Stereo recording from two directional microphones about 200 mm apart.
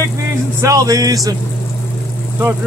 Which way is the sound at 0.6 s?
15° right (ahead or behind).